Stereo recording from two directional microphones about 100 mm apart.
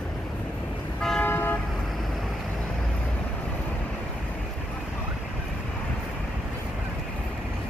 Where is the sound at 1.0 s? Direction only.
5° left (ahead or behind).